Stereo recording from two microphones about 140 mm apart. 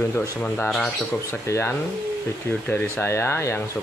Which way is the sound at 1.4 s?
20° left (ahead or behind).